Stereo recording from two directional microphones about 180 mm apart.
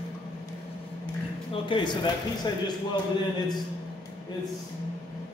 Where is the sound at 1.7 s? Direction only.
25° left (ahead or behind).